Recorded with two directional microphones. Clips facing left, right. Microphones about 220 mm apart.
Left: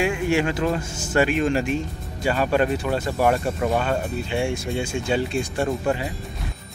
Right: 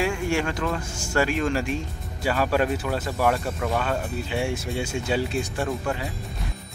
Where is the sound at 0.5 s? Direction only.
25° left (ahead or behind).